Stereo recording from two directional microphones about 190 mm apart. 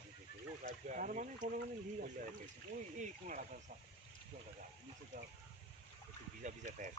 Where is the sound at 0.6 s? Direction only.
45° right (ahead or behind).